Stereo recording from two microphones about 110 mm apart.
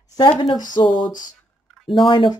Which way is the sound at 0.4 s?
45° left (ahead or behind).